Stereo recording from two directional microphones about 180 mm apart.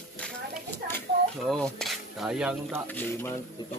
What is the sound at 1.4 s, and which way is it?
Speech, centre (ahead or behind).